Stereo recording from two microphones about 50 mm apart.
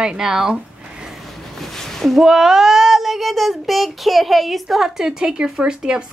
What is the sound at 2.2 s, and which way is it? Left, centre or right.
Speech, centre.